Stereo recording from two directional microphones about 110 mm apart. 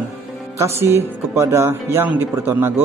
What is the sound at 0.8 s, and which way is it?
Speech, 25° right (ahead or behind).